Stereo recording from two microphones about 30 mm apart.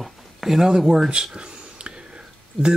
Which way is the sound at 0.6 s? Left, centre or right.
Right.